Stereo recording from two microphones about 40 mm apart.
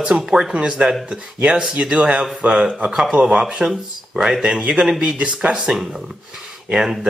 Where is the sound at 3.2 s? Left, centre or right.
Centre.